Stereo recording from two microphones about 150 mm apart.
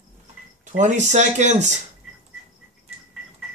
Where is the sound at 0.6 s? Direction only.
55° right (ahead or behind).